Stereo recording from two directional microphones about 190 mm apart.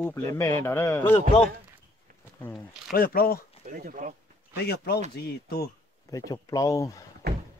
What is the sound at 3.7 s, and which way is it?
Speech, 45° right (ahead or behind).